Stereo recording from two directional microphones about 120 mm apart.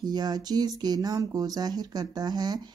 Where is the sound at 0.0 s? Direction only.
35° right (ahead or behind).